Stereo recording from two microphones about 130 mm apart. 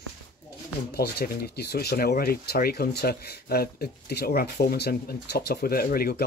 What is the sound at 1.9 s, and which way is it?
Speech, 90° left.